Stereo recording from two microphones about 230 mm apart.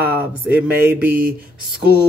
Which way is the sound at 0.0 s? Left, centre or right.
Centre.